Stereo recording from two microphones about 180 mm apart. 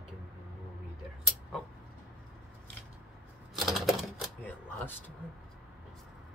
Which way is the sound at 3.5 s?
Centre (ahead or behind).